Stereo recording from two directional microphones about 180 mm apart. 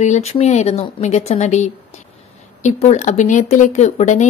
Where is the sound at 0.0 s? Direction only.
40° left (ahead or behind).